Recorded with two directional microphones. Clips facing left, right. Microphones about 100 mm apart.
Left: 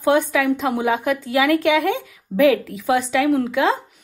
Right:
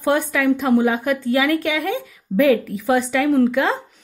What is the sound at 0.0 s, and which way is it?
Speech, 15° left (ahead or behind).